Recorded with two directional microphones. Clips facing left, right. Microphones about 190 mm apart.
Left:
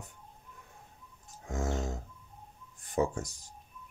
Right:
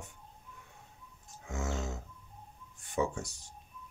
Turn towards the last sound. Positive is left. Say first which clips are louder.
# left 2 dB
turn(degrees=40)  # may be behind; listen again after turning